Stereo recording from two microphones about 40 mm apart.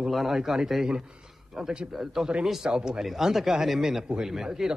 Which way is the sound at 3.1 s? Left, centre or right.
Centre.